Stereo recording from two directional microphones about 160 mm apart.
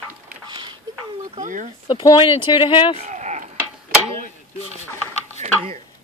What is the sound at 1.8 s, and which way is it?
Speech, 30° left (ahead or behind).